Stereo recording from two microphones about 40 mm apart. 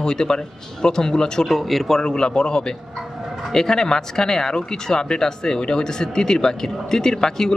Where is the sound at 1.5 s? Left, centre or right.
Centre.